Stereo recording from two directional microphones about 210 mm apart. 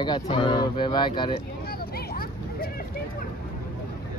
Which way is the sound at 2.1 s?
45° left (ahead or behind).